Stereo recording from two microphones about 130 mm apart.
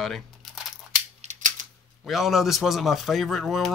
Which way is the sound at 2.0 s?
Centre (ahead or behind).